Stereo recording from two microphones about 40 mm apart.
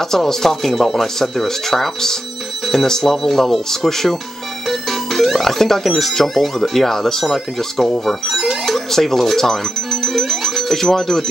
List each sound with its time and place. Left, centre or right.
0.1 s speech: centre
10.0 s music: centre